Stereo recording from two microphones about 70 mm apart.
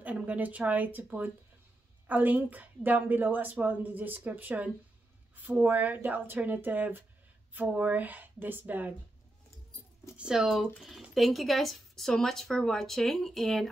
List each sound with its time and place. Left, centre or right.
0.0 s a woman's voice: right
10.1 s speech: centre